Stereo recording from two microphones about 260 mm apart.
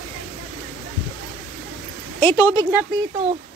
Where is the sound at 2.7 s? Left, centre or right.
Centre.